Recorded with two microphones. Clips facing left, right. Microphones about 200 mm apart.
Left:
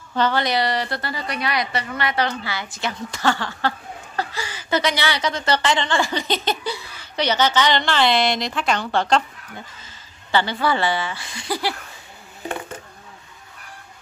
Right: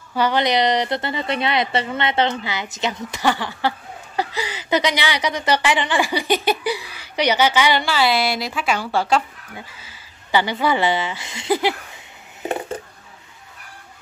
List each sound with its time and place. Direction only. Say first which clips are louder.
0.1 s a woman's voice: right 2 dB; 15° right (ahead or behind)